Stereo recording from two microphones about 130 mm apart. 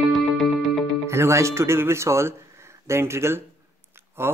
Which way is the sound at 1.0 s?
20° right (ahead or behind).